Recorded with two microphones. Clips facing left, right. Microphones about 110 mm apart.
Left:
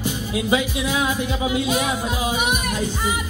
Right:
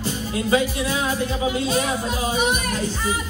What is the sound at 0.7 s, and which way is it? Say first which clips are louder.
Music: left 1 dB; 15° left (ahead or behind).